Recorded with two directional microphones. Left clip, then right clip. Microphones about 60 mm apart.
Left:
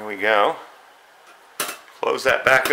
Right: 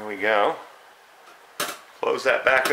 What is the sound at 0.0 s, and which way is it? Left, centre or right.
Speech, left.